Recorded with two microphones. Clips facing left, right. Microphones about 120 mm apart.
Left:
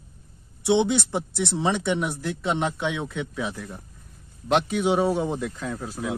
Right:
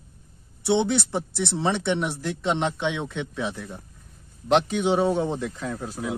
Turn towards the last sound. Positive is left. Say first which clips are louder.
# even
turn(degrees=0)  # may be behind; listen again after turning